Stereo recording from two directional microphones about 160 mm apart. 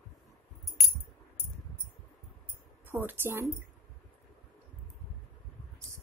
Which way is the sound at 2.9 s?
15° right (ahead or behind).